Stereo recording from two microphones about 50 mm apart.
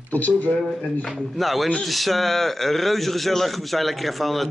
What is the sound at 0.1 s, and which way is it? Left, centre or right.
Speech, left.